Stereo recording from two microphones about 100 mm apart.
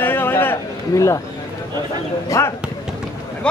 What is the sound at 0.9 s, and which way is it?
Speech, 35° left (ahead or behind).